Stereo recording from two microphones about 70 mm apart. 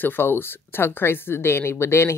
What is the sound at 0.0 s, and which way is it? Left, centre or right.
Speech, left.